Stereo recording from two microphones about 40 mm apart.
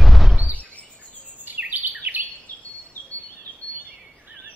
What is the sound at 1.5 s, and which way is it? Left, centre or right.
Bird vocalization, right.